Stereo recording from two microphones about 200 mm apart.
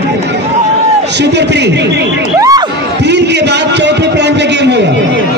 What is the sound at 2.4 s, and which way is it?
Speech, 20° right (ahead or behind).